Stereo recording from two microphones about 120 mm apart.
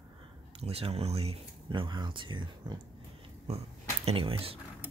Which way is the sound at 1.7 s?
40° right (ahead or behind).